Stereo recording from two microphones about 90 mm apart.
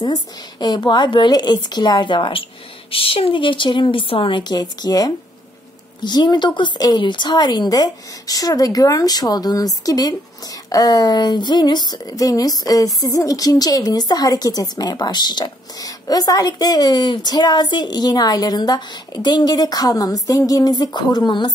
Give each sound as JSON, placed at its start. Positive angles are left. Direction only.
{"t": 0.0, "sound": "a woman's voice", "side_deg": 50}
{"t": 2.9, "sound": "speech", "side_deg": 90}
{"t": 4.4, "sound": "speech", "side_deg": 50}